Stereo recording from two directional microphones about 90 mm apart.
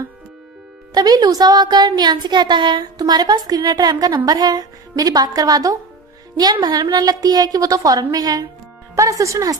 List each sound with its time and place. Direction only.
0.9 s speech: 45° right (ahead or behind)